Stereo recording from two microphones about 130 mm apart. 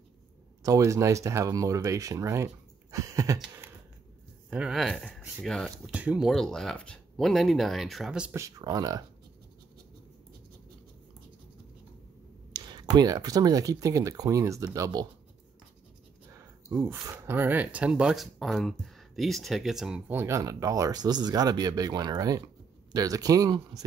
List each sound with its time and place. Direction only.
0.7 s speech: 25° right (ahead or behind)
4.5 s speech: 5° right (ahead or behind)
5.9 s speech: 10° right (ahead or behind)
8.3 s speech: 25° right (ahead or behind)
12.5 s speech: 35° right (ahead or behind)
16.6 s speech: 20° right (ahead or behind); by 20.0 s centre (ahead or behind)
20.1 s speech: 20° right (ahead or behind)